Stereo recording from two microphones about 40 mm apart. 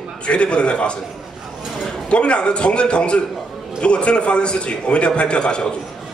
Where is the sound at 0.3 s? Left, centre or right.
Left.